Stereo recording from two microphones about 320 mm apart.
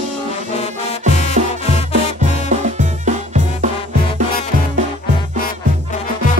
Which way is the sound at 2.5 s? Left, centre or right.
Right.